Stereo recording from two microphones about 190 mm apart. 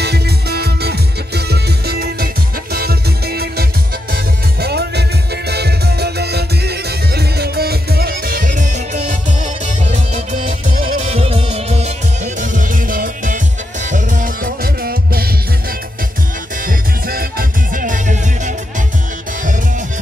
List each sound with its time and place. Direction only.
0.0 s music: 60° right (ahead or behind); by 9.0 s 40° right (ahead or behind)
11.1 s music: 30° right (ahead or behind)
12.4 s music: 45° right (ahead or behind)
16.6 s music: 50° right (ahead or behind)